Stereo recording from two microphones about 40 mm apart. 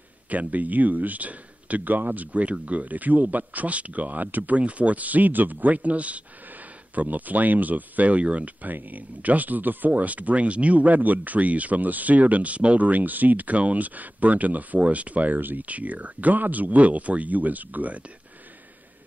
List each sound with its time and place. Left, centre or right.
0.3 s speech: right
4.6 s speech: right
8.6 s speech: right